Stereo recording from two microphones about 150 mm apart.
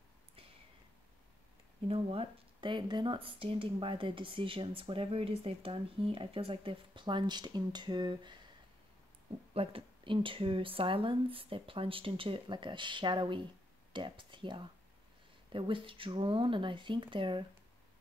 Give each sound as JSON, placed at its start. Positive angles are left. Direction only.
{"t": 1.9, "sound": "speech", "side_deg": -40}
{"t": 9.5, "sound": "speech", "side_deg": -40}